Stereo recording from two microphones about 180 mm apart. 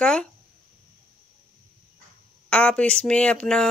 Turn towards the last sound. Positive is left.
turn(degrees=5)  # may be behind; listen again after turning